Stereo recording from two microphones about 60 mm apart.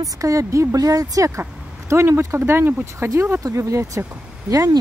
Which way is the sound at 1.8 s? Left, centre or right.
Right.